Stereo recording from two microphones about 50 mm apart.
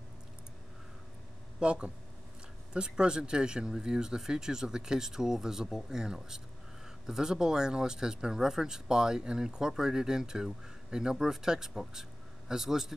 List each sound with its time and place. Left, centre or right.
1.6 s speech: right